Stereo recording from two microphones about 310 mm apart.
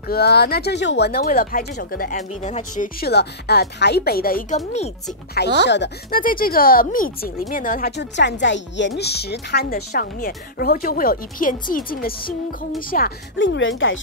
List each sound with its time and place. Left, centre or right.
0.1 s speech: left
5.6 s speech: left